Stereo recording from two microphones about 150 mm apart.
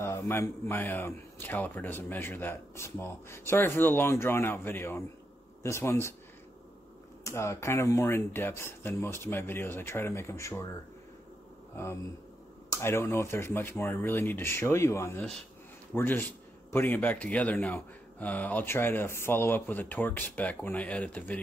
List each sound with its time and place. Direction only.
0.0 s speech: 15° left (ahead or behind)
7.2 s speech: 20° left (ahead or behind)
11.7 s speech: 15° left (ahead or behind)